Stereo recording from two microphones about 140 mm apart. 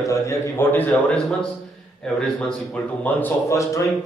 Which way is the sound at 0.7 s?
10° left (ahead or behind).